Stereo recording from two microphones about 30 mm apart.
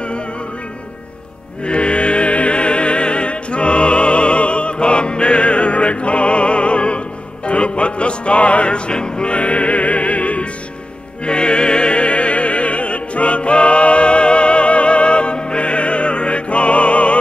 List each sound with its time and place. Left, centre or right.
1.6 s music: left
11.2 s music: left